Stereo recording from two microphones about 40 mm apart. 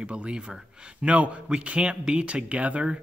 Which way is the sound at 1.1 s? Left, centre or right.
Right.